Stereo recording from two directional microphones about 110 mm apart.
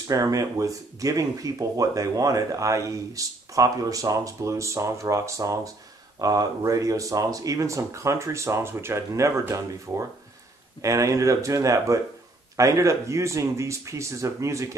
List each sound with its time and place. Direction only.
0.1 s speech: 30° right (ahead or behind)